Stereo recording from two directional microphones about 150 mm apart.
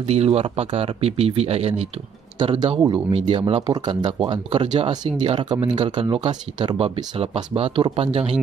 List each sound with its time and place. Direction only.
0.0 s speech: 45° right (ahead or behind)